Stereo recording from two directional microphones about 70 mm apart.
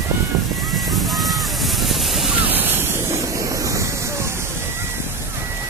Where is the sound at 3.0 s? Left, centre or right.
Right.